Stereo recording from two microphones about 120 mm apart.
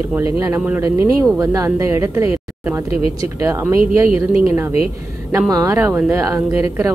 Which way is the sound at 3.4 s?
25° right (ahead or behind).